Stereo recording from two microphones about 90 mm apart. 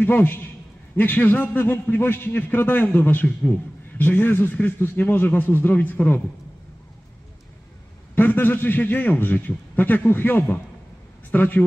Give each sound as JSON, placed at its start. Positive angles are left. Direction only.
{"t": 0.0, "sound": "a man's voice", "side_deg": 20}
{"t": 8.1, "sound": "a man's voice", "side_deg": 20}